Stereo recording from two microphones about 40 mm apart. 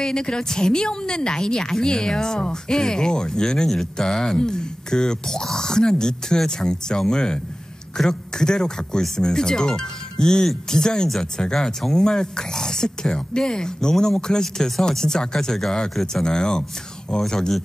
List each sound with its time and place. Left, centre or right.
0.0 s speech: centre